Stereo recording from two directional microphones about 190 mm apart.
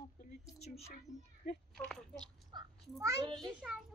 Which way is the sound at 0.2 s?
35° left (ahead or behind).